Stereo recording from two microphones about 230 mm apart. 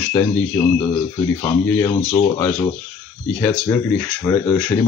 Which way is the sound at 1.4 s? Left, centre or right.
Centre.